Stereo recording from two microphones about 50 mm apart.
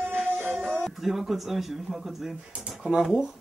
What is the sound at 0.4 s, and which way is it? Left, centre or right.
Music, right.